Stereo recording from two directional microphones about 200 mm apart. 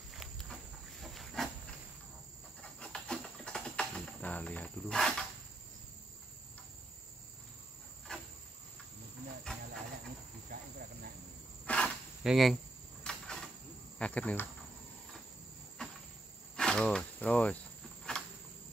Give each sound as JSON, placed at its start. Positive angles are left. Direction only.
{"t": 0.2, "sound": "walk", "side_deg": 0}
{"t": 1.0, "sound": "a sound", "side_deg": 0}
{"t": 2.8, "sound": "cricket", "side_deg": 5}
{"t": 8.1, "sound": "cricket", "side_deg": 5}
{"t": 9.5, "sound": "hiss", "side_deg": 5}
{"t": 10.5, "sound": "cricket", "side_deg": -45}
{"t": 11.6, "sound": "a sound", "side_deg": 5}
{"t": 13.9, "sound": "speech", "side_deg": 5}
{"t": 15.8, "sound": "cricket", "side_deg": 5}
{"t": 16.5, "sound": "insect", "side_deg": 5}
{"t": 18.1, "sound": "cricket", "side_deg": 5}